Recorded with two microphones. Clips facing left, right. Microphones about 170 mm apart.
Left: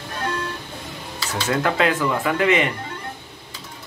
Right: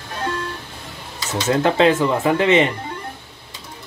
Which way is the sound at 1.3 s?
25° right (ahead or behind).